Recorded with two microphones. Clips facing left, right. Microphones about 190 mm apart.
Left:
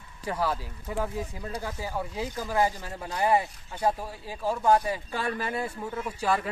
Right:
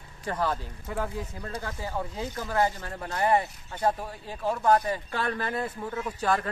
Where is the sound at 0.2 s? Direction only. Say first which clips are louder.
Even; 5° left (ahead or behind).